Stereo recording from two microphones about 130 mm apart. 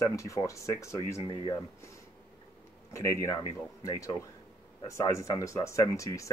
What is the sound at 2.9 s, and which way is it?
Speech, 25° left (ahead or behind).